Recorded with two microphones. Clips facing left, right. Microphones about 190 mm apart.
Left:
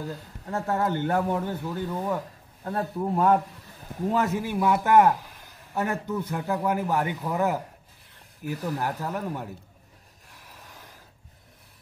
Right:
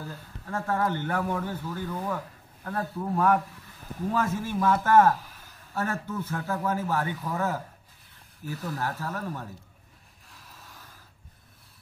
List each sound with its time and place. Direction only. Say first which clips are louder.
0.1 s speech: left 3 dB; 20° left (ahead or behind)
10.3 s mechanisms: left 2 dB; 15° left (ahead or behind)